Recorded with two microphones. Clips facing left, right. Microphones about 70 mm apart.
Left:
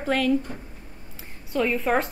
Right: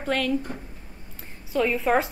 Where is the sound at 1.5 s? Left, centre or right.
Centre.